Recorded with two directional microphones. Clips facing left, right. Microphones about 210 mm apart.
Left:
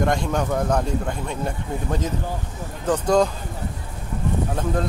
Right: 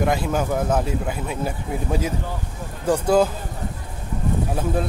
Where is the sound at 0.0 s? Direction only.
5° right (ahead or behind).